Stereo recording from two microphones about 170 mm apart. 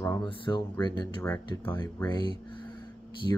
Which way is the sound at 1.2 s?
10° left (ahead or behind).